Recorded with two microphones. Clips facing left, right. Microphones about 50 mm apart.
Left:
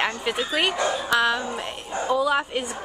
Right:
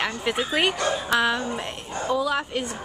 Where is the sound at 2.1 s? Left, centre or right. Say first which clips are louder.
Left 3 dB; centre.